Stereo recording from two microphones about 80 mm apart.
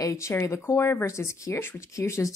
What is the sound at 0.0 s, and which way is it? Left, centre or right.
Speech, left.